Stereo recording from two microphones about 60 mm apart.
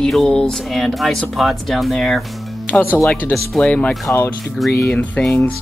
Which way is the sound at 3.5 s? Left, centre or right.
Centre.